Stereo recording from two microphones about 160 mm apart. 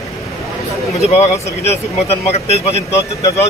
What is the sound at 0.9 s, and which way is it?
Speech, 40° left (ahead or behind).